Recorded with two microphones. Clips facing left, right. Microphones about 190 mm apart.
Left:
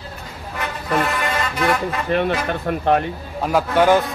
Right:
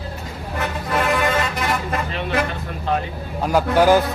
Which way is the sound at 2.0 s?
55° left (ahead or behind).